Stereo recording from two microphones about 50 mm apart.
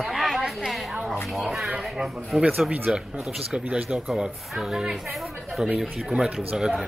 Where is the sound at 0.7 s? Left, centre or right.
Centre.